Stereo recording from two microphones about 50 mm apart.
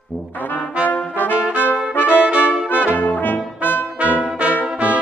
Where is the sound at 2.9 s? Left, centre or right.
Left.